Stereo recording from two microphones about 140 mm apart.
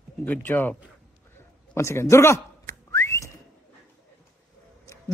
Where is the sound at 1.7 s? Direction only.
20° left (ahead or behind).